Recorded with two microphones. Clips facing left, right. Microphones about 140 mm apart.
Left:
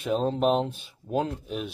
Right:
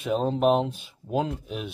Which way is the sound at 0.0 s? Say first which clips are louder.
Right 1 dB; centre (ahead or behind).